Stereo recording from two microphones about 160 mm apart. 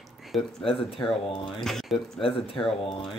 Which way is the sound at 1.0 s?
35° left (ahead or behind).